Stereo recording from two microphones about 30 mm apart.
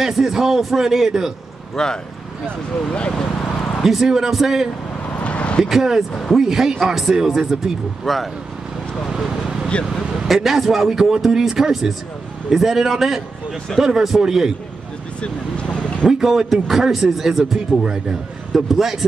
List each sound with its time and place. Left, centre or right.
0.0 s speech: centre
1.8 s speech: centre
3.8 s speech: centre
5.2 s vehicle: left
5.7 s speech: centre
8.0 s speech: centre
9.7 s speech: left
10.2 s speech: centre
15.2 s vehicle: left
16.2 s speech: centre